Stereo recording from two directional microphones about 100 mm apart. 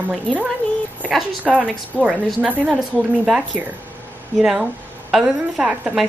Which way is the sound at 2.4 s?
15° right (ahead or behind).